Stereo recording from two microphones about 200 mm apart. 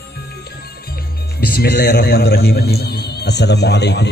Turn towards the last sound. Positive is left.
turn(degrees=55)  # may be behind; listen again after turning